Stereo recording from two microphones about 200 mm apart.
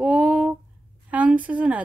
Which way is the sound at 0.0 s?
5° right (ahead or behind).